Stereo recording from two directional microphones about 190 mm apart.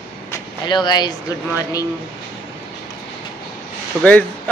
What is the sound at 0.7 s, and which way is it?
Speech, 25° left (ahead or behind).